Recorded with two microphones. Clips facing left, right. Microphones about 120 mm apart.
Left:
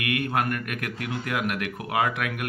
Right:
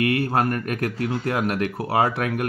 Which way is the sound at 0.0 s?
35° right (ahead or behind).